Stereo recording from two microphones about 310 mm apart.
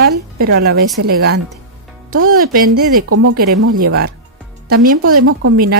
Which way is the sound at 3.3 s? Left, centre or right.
Right.